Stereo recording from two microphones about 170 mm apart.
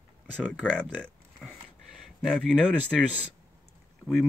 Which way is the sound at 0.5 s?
5° left (ahead or behind).